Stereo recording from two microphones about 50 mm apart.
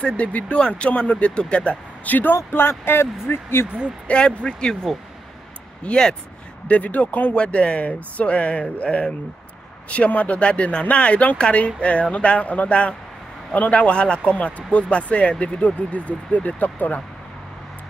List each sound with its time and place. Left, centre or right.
0.0 s speech: left
2.3 s speech: left
4.4 s speech: centre
6.7 s speech: left